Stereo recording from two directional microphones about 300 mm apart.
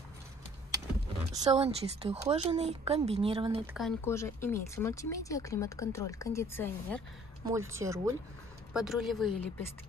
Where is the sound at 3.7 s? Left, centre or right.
Centre.